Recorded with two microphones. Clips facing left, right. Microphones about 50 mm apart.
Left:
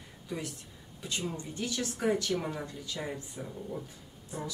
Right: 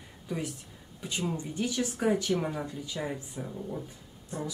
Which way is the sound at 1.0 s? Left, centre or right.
Centre.